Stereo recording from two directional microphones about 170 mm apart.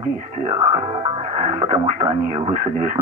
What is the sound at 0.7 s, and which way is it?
Music, 35° right (ahead or behind).